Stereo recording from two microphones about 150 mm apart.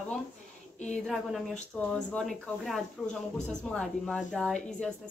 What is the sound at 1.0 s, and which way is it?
Speech, centre (ahead or behind).